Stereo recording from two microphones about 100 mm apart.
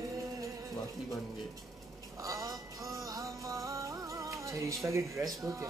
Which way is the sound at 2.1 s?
35° right (ahead or behind).